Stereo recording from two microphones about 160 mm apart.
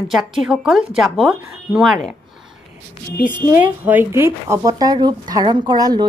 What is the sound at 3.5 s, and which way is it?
Speech, 10° right (ahead or behind).